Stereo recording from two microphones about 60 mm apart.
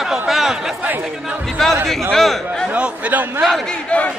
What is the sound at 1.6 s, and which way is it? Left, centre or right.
A man's voice, centre.